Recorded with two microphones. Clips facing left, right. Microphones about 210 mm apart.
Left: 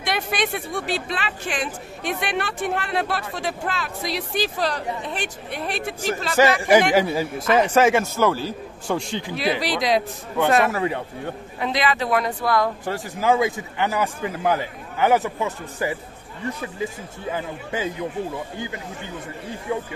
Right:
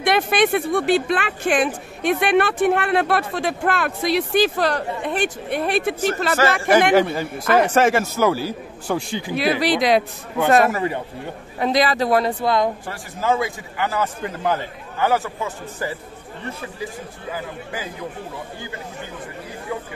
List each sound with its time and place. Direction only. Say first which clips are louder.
0.0 s speech: right 7 dB; 55° right (ahead or behind)
6.3 s a man's voice: left 3 dB; 15° left (ahead or behind)
7.0 s a man's voice: right 1 dB; 5° left (ahead or behind)
7.4 s speech: right 2 dB; 55° right (ahead or behind)
7.7 s a man's voice: even; centre (ahead or behind)
9.4 s speech: right 5 dB; 60° right (ahead or behind)
10.7 s a man's voice: right 1 dB; centre (ahead or behind)
11.6 s speech: right 4 dB; 40° right (ahead or behind); by 12.7 s 20° right (ahead or behind)
12.8 s a man's voice: left 2 dB; 15° left (ahead or behind)
19.7 s a man's voice: left 3 dB; 20° left (ahead or behind)